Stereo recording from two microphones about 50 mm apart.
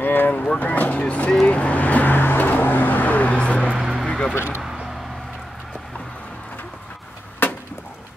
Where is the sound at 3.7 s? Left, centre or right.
Centre.